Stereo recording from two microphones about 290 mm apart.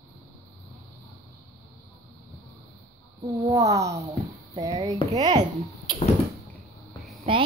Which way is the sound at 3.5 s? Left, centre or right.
Centre.